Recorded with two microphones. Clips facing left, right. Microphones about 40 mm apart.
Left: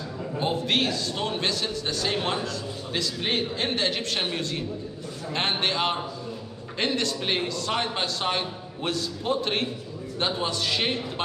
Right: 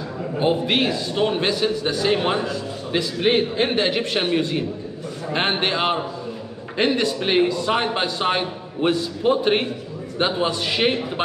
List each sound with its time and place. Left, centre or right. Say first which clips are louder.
0.4 s a man's voice: right 5 dB; centre